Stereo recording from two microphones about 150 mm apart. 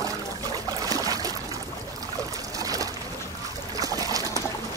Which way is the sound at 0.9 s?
25° right (ahead or behind).